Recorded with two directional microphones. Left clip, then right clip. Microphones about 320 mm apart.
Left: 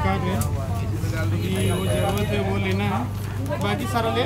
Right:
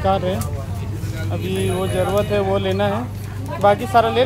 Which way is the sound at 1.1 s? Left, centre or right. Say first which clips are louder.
Right 4 dB; centre.